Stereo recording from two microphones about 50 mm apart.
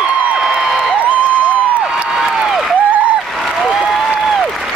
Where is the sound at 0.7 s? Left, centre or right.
Right.